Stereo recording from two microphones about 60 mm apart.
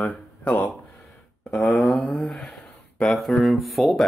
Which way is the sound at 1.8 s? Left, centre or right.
Centre.